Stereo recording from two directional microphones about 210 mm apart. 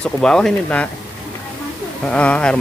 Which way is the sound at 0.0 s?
5° left (ahead or behind).